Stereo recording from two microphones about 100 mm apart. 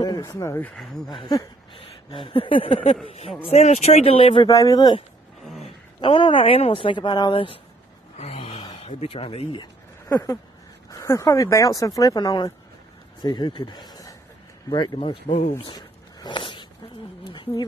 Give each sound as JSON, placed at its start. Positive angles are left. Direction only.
{"t": 0.2, "sound": "speech", "side_deg": 30}
{"t": 1.0, "sound": "speech", "side_deg": 45}
{"t": 2.1, "sound": "speech", "side_deg": 60}
{"t": 3.4, "sound": "speech", "side_deg": 90}
{"t": 4.5, "sound": "speech", "side_deg": 35}
{"t": 5.9, "sound": "speech", "side_deg": 60}
{"t": 8.2, "sound": "a sound", "side_deg": 90}
{"t": 8.8, "sound": "speech", "side_deg": 75}
{"t": 10.0, "sound": "speech", "side_deg": 30}
{"t": 15.0, "sound": "speech", "side_deg": 70}
{"t": 16.2, "sound": "a sound", "side_deg": 50}
{"t": 17.3, "sound": "a woman's voice", "side_deg": 50}